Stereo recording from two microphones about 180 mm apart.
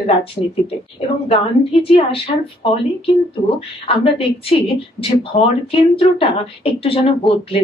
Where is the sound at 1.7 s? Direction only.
30° left (ahead or behind).